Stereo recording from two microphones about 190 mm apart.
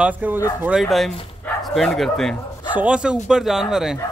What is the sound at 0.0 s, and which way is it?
Speech, 10° right (ahead or behind).